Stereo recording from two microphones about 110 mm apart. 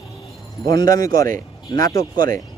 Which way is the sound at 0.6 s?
35° left (ahead or behind).